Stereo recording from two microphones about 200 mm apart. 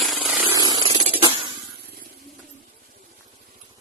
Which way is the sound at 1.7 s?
50° right (ahead or behind).